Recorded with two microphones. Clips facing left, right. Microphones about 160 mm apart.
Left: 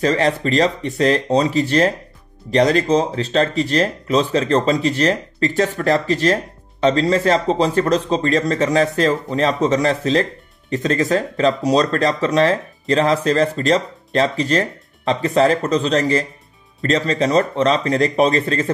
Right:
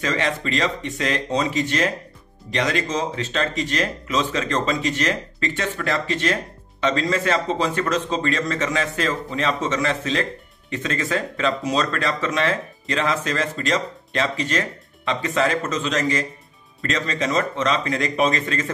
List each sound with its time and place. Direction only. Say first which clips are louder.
0.0 s speech: left 7 dB; 35° left (ahead or behind)